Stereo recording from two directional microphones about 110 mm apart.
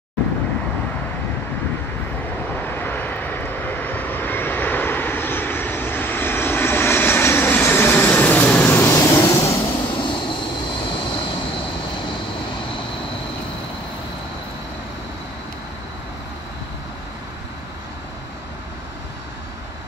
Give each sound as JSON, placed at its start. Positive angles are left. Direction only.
{"t": 2.5, "sound": "vehicle", "side_deg": 20}
{"t": 9.8, "sound": "train", "side_deg": 45}
{"t": 10.9, "sound": "vehicle", "side_deg": 45}